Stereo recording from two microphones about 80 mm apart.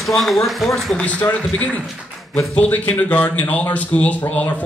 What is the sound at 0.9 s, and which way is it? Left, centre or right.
Speech, centre.